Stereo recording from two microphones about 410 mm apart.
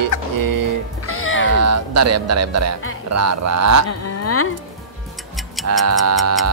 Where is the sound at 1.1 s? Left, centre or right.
Left.